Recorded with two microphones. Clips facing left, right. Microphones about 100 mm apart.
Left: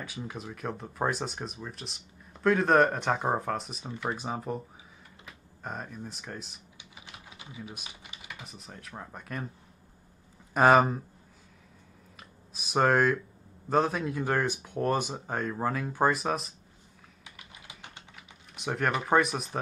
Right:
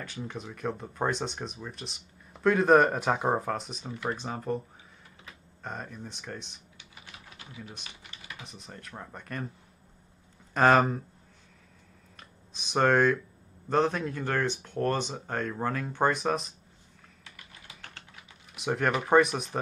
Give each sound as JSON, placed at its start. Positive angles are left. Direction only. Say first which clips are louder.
{"t": 0.0, "sound": "speech", "louder": "right 1 dB", "side_deg": 5}
{"t": 6.8, "sound": "typing", "louder": "left 1 dB", "side_deg": 15}
{"t": 8.3, "sound": "speech", "louder": "right 1 dB", "side_deg": 0}
{"t": 10.5, "sound": "speech", "louder": "left 1 dB", "side_deg": 10}
{"t": 12.2, "sound": "speech", "louder": "left 1 dB", "side_deg": 5}
{"t": 17.2, "sound": "typing", "louder": "left 1 dB", "side_deg": 15}
{"t": 18.1, "sound": "speech", "louder": "even", "side_deg": 0}